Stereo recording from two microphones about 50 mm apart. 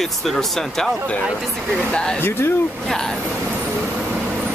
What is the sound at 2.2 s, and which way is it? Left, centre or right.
Speech, left.